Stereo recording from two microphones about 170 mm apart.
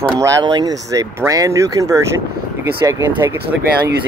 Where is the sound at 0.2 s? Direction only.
20° right (ahead or behind).